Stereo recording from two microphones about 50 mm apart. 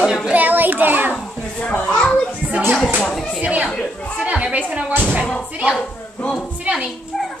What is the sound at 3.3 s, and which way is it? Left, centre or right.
Speech, right.